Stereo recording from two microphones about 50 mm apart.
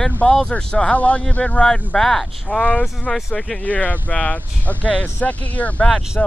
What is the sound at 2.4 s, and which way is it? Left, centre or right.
Speech, left.